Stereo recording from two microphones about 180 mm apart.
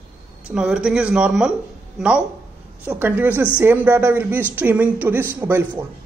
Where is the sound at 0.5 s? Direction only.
5° right (ahead or behind).